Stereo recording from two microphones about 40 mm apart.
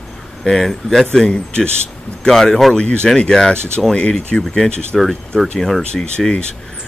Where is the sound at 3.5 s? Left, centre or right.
Right.